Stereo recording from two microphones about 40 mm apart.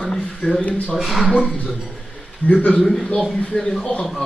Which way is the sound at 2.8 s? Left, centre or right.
Centre.